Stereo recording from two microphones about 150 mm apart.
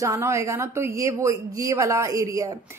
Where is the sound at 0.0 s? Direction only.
20° right (ahead or behind).